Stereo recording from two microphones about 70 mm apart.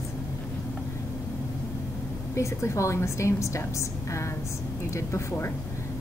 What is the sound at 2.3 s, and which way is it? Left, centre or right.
A woman's voice, left.